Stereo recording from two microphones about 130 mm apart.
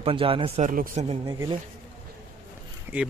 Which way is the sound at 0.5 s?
85° right.